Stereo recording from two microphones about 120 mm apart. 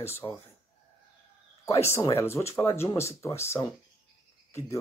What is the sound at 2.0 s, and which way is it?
Speech, 25° left (ahead or behind).